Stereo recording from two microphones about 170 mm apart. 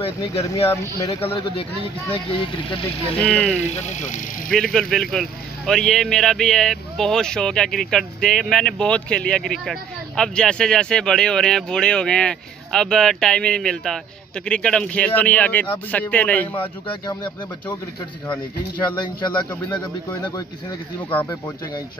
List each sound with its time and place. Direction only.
0.0 s speech: 35° left (ahead or behind)
0.7 s a man's voice: 20° left (ahead or behind)
1.2 s speech: 35° left (ahead or behind)
3.2 s a man's voice: 5° left (ahead or behind)
3.7 s speech: 45° left (ahead or behind)
4.5 s a man's voice: 5° left (ahead or behind)
18.8 s speech: 25° left (ahead or behind)